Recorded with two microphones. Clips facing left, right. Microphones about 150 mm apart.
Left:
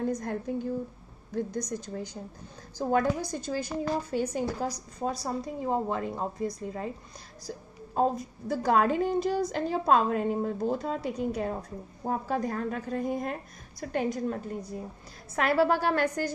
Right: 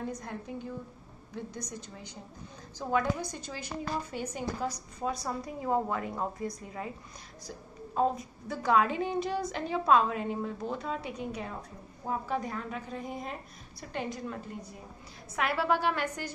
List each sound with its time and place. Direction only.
0.1 s a woman's voice: 45° left (ahead or behind)
2.9 s a woman's voice: 40° left (ahead or behind)